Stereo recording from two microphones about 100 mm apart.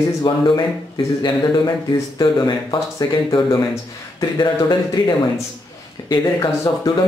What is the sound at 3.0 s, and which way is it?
Speech, 35° left (ahead or behind).